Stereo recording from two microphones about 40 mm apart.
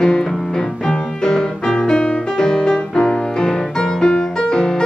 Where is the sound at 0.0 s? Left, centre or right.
Centre.